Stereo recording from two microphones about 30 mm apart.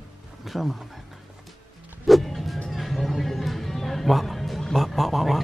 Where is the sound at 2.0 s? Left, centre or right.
Centre.